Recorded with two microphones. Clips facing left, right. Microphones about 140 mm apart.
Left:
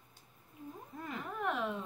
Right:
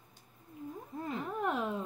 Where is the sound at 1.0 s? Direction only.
30° right (ahead or behind).